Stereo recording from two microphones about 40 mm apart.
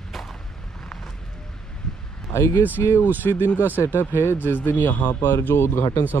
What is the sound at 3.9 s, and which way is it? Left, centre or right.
Speech, left.